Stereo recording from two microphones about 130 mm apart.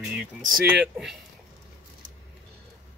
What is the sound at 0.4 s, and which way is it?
Speech, 90° right.